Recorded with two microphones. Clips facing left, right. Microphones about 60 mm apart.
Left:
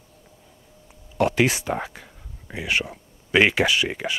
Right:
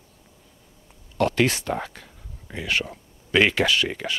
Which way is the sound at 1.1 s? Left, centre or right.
Centre.